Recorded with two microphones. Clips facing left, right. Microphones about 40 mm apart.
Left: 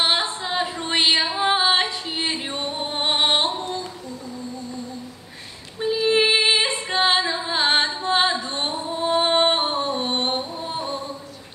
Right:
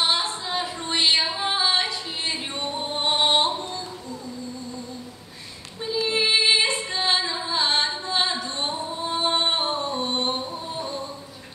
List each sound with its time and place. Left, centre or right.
0.0 s a sound: left
0.5 s female singing: left
5.8 s female singing: left
8.0 s music: left